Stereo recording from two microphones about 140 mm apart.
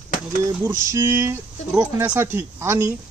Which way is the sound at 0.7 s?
20° right (ahead or behind).